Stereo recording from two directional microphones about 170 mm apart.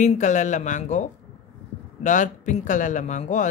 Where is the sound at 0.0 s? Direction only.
45° left (ahead or behind).